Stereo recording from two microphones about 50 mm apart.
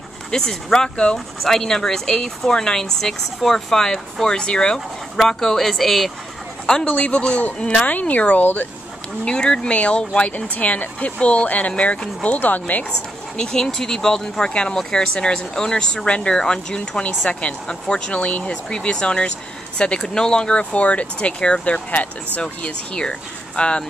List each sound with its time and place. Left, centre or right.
0.3 s speech: centre
1.1 s speech: centre
6.6 s speech: centre
7.8 s speech: left
9.2 s speech: centre; by 12.8 s left
13.4 s speech: centre
14.5 s speech: left
22.4 s speech: centre